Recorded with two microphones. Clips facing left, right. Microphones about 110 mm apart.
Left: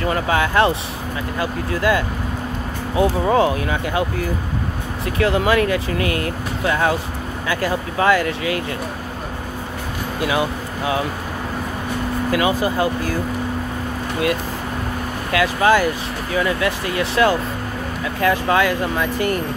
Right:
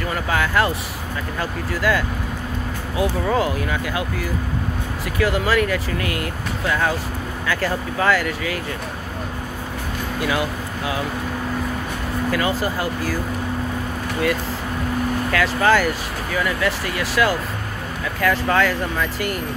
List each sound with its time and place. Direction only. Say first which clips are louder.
0.0 s speech: left 3 dB; 25° left (ahead or behind)
1.8 s speech: left 2 dB; 20° left (ahead or behind)
5.0 s speech: left 3 dB; 25° left (ahead or behind)
12.3 s speech: left 3 dB; 15° left (ahead or behind)
15.3 s speech: left 3 dB; 15° left (ahead or behind)